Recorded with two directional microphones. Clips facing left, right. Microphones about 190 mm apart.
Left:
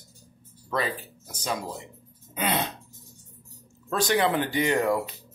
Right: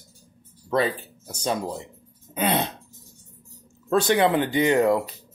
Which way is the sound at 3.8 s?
25° right (ahead or behind).